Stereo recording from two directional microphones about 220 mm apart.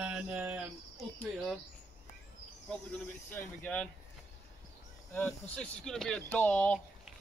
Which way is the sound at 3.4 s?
10° left (ahead or behind).